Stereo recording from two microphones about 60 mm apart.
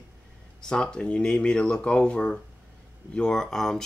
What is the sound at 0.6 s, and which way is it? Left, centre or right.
Speech, centre.